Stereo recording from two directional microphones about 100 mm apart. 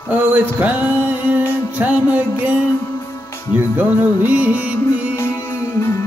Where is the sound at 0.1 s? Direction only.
15° right (ahead or behind).